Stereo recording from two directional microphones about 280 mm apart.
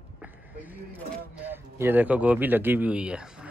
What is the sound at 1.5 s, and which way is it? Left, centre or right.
Speech, centre.